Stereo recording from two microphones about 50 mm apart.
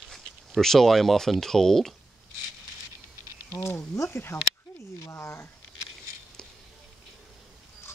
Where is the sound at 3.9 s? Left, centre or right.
Left.